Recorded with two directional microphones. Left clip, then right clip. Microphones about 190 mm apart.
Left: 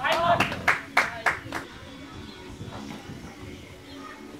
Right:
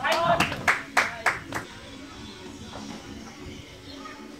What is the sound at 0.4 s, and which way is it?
Clapping, 35° right (ahead or behind).